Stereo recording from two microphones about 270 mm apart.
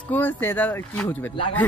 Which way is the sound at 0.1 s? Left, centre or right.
Centre.